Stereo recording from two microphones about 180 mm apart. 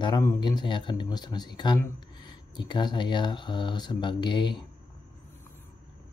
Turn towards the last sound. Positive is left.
turn(degrees=25)  # may be behind; listen again after turning